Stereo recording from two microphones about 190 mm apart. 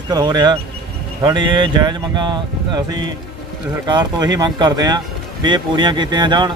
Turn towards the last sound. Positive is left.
turn(degrees=-25)  # may be behind; listen again after turning